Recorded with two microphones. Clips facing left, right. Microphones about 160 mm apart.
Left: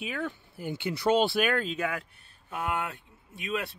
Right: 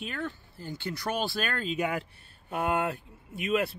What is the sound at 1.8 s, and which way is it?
Speech, 25° right (ahead or behind).